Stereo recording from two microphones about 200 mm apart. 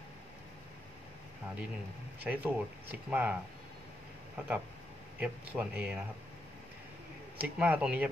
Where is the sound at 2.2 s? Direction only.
10° right (ahead or behind).